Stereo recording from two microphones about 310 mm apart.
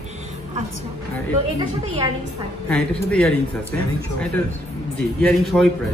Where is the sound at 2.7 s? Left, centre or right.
Centre.